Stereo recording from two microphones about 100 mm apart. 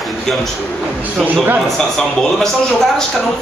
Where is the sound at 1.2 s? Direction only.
15° right (ahead or behind).